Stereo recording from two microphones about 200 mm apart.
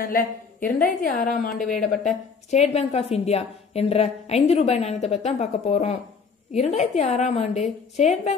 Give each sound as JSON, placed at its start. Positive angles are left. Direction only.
{"t": 0.0, "sound": "a woman's voice", "side_deg": 45}